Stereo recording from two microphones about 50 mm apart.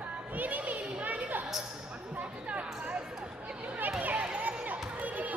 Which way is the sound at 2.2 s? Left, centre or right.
Right.